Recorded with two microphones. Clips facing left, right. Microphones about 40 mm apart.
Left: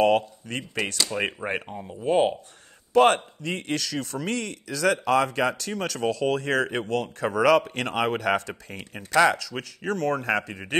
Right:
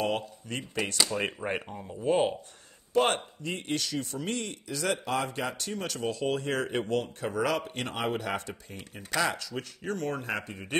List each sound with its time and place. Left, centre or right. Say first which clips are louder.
0.0 s speech: left 10 dB; left
1.1 s speech: left 3 dB; left
2.9 s a man's voice: left 7 dB; left
9.1 s speech: left 9 dB; left
9.4 s speech: left 3 dB; left